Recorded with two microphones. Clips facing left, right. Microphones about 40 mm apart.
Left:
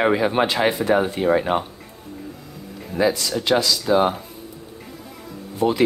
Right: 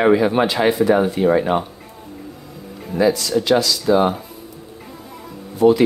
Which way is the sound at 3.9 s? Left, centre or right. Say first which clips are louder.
Right 3 dB; centre.